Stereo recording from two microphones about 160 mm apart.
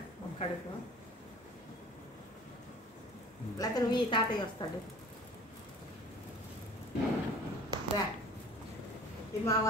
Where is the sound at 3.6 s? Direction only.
30° left (ahead or behind).